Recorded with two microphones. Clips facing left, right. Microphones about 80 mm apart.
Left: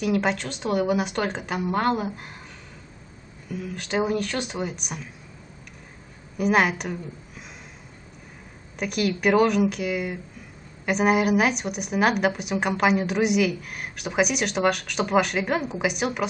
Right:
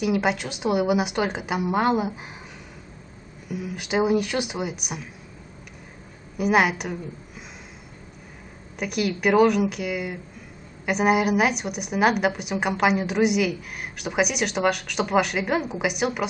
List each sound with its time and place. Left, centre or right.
0.0 s a woman's voice: centre
3.4 s a woman's voice: centre
6.3 s a woman's voice: centre
8.7 s a woman's voice: centre